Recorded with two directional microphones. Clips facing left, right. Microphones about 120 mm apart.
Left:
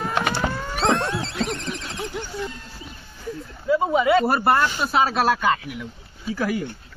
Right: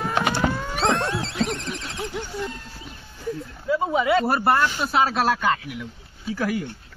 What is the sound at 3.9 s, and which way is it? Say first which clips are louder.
Speech: left 1 dB; 10° left (ahead or behind).